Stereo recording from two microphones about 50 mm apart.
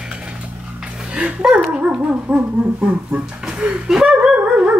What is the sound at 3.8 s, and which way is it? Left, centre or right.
Dog, centre.